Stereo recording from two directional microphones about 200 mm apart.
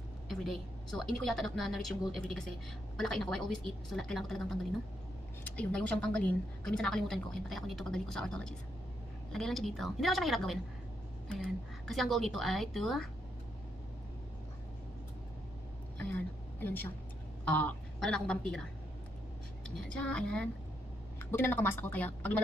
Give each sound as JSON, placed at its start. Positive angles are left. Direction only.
{"t": 0.3, "sound": "a woman's voice", "side_deg": 0}
{"t": 11.9, "sound": "a woman's voice", "side_deg": 0}
{"t": 16.0, "sound": "a sound", "side_deg": 10}
{"t": 17.5, "sound": "a woman's voice", "side_deg": 5}
{"t": 19.9, "sound": "a woman's voice", "side_deg": 5}